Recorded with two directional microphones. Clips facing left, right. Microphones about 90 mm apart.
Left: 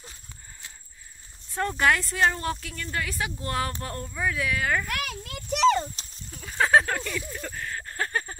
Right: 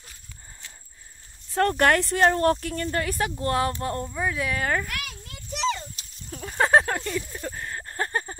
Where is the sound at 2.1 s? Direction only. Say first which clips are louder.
Right 5 dB; 45° right (ahead or behind).